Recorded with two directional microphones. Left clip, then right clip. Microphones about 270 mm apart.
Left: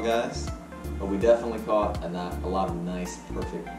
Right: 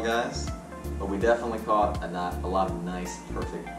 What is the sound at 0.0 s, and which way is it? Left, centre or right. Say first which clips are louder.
Speech: left 1 dB; centre.